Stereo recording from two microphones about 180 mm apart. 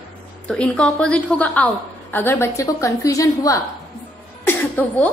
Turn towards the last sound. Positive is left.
turn(degrees=10)  # may be behind; listen again after turning